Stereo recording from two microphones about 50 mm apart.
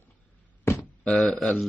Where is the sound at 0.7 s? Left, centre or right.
Left.